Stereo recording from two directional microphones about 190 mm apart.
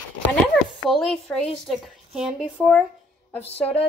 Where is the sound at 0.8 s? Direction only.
Centre (ahead or behind).